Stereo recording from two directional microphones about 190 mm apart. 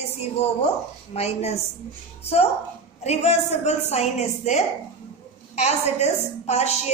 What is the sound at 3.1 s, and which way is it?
A woman's voice, 35° left (ahead or behind).